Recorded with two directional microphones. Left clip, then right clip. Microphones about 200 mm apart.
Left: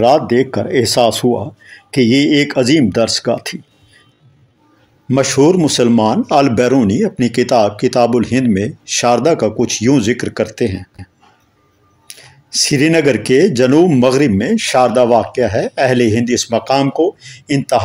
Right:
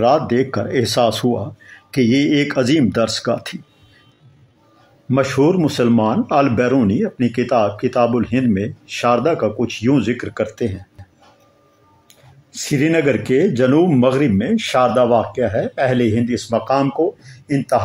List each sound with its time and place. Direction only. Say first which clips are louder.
0.0 s speech: left 4 dB; 25° left (ahead or behind)
5.0 s a man's voice: left 4 dB; 30° left (ahead or behind)
12.5 s a man's voice: left 5 dB; 30° left (ahead or behind)
17.5 s speech: left 3 dB; 55° left (ahead or behind)